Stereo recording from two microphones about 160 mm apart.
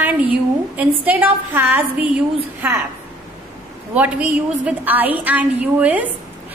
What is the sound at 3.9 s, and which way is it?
A woman's voice, 10° right (ahead or behind).